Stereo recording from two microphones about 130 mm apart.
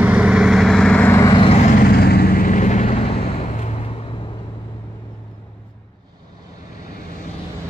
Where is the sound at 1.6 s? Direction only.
85° left; by 3.5 s 50° left (ahead or behind).